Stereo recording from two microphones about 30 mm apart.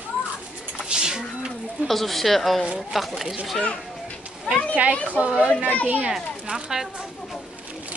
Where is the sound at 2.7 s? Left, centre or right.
Centre.